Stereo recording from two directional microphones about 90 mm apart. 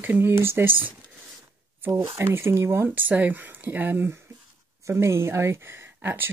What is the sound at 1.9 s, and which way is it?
Speech, 30° right (ahead or behind).